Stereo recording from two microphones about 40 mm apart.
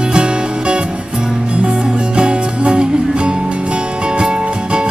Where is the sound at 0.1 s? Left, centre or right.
Right.